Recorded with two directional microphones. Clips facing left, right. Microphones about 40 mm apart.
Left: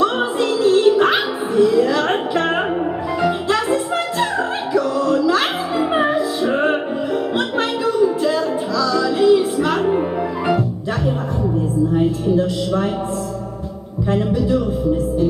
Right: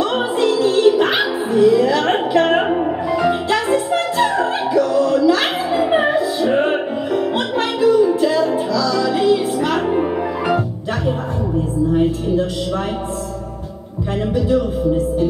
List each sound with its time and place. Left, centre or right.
0.0 s music: centre
3.3 s music: right
3.9 s music: centre
9.4 s music: right
9.8 s music: centre